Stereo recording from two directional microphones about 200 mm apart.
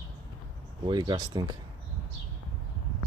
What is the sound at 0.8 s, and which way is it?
Speech, 20° right (ahead or behind).